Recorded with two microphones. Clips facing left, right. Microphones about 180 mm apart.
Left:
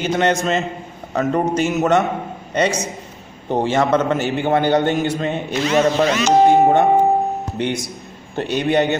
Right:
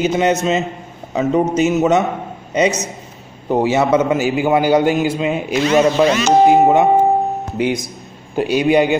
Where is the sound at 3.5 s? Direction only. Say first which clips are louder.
Right 3 dB; 10° right (ahead or behind).